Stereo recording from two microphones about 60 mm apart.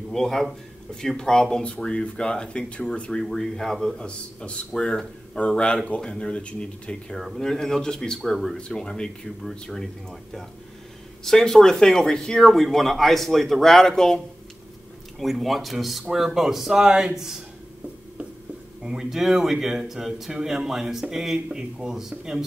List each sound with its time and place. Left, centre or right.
0.1 s a man's voice: centre
7.2 s a man's voice: centre
18.9 s a man's voice: centre